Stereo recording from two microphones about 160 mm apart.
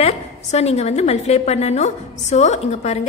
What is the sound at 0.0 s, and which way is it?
A woman's voice, 40° left (ahead or behind).